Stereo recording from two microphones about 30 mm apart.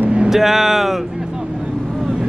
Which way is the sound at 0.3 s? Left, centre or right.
Centre.